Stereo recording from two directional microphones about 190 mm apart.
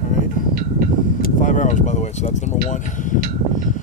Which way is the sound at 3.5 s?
40° left (ahead or behind).